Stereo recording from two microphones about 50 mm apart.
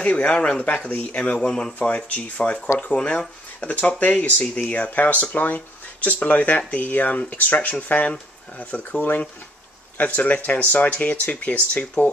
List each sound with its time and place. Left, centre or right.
0.0 s speech: left